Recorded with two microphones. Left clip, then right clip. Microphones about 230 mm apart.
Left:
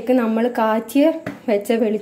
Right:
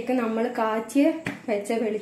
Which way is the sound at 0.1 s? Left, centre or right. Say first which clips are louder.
Left 8 dB; left.